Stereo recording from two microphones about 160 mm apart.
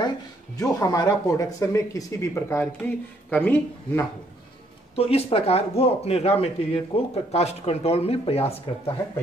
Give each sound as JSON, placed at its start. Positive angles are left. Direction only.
{"t": 0.6, "sound": "speech", "side_deg": 20}
{"t": 4.9, "sound": "speech", "side_deg": 40}